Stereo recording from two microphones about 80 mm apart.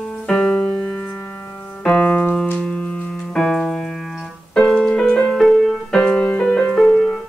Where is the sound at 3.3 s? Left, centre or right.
Centre.